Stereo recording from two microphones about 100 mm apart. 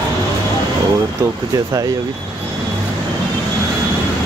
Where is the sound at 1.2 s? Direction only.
35° right (ahead or behind).